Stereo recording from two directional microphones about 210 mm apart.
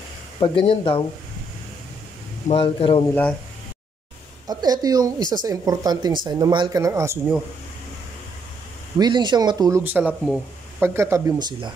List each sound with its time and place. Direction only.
0.4 s speech: 25° left (ahead or behind)
2.4 s speech: 25° left (ahead or behind)
4.5 s a woman's voice: 20° right (ahead or behind)
8.9 s a woman's voice: 20° right (ahead or behind)